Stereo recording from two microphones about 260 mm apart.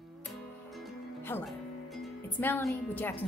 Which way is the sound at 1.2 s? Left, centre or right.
Centre.